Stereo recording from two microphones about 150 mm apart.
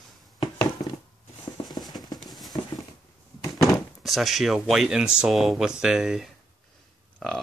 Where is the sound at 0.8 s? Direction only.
25° left (ahead or behind).